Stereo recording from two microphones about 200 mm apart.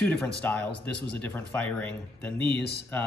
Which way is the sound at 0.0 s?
10° left (ahead or behind).